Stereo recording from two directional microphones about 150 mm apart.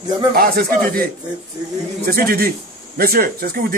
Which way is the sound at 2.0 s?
85° right.